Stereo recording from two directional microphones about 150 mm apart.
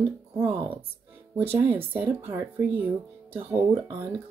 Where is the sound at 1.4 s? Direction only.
15° right (ahead or behind).